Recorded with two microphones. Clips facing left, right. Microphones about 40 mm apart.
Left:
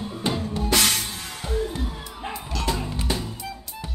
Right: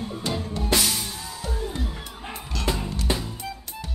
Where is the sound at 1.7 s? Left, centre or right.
Centre.